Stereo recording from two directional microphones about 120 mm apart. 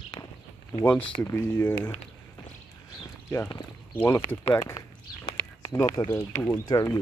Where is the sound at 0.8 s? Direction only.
10° left (ahead or behind).